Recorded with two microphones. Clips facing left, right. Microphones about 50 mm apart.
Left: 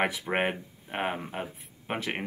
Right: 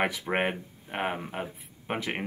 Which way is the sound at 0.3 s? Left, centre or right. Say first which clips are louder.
Even; centre.